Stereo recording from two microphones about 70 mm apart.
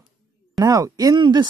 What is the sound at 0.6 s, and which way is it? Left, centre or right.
Speech, right.